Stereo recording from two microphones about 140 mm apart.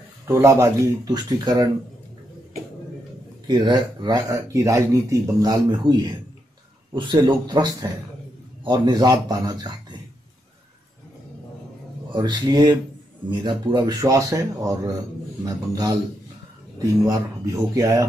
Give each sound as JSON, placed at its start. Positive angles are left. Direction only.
{"t": 0.3, "sound": "speech", "side_deg": -20}
{"t": 3.4, "sound": "a man's voice", "side_deg": -30}
{"t": 12.1, "sound": "speech", "side_deg": -30}